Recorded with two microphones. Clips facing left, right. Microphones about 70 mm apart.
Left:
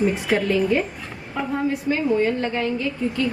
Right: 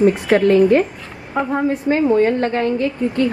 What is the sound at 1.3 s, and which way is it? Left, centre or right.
A woman's voice, right.